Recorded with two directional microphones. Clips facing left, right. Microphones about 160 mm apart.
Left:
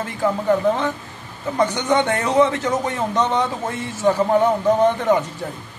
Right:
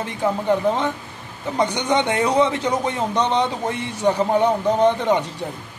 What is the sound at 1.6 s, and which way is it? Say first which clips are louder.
A man's voice: left 1 dB; 15° right (ahead or behind).